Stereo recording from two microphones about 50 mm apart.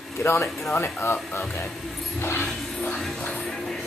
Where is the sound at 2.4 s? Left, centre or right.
Centre.